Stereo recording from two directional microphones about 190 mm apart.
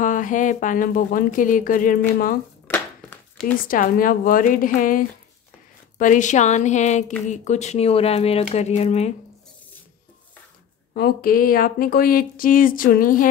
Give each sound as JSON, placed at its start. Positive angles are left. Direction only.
{"t": 0.0, "sound": "speech", "side_deg": 45}
{"t": 2.7, "sound": "a sound", "side_deg": 10}
{"t": 3.6, "sound": "speech", "side_deg": 45}
{"t": 10.9, "sound": "speech", "side_deg": 55}